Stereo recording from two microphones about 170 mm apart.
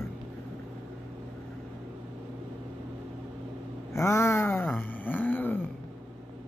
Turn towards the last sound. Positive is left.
turn(degrees=10)  # may be behind; listen again after turning